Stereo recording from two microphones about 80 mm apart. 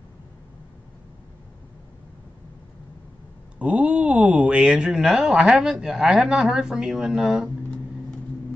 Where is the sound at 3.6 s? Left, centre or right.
Centre.